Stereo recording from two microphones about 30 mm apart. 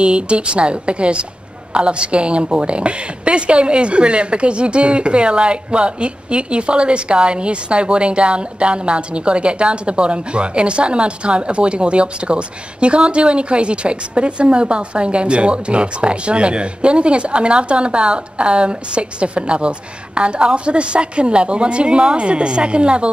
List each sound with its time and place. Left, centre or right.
0.0 s a woman's voice: right